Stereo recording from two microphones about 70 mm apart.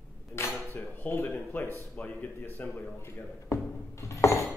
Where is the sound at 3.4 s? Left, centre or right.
Left.